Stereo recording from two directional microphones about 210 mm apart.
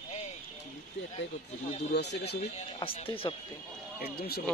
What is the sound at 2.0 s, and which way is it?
Speech, 55° left (ahead or behind).